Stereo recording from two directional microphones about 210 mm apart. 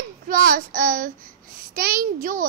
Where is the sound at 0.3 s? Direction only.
40° right (ahead or behind).